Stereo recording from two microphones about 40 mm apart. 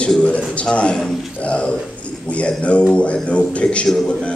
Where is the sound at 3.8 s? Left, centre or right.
Centre.